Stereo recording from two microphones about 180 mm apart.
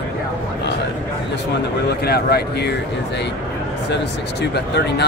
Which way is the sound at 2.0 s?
60° left (ahead or behind).